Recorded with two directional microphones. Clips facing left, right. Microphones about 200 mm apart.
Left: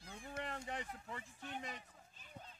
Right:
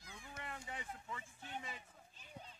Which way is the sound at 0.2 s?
45° left (ahead or behind).